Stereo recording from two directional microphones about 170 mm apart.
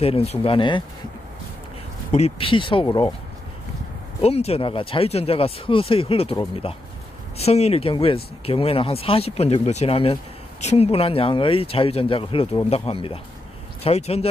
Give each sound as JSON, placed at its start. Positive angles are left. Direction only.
{"t": 0.0, "sound": "speech", "side_deg": 35}
{"t": 2.1, "sound": "speech", "side_deg": 35}
{"t": 4.2, "sound": "speech", "side_deg": 35}